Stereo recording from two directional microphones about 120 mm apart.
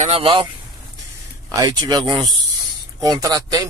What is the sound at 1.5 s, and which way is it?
Speech, 30° right (ahead or behind).